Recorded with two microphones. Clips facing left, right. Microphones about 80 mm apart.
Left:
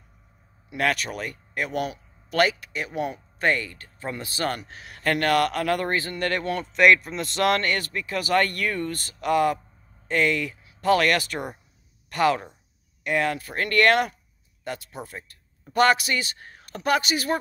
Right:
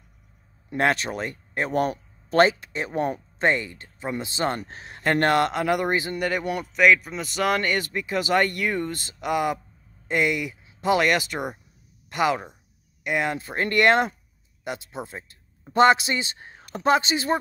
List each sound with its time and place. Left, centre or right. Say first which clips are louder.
0.7 s speech: right 2 dB; right
3.3 s speech: even; right
6.7 s speech: left 1 dB; centre; by 17.4 s right